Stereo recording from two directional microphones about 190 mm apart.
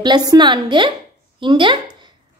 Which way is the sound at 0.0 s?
20° right (ahead or behind).